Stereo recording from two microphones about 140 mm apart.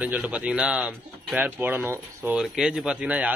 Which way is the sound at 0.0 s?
10° right (ahead or behind).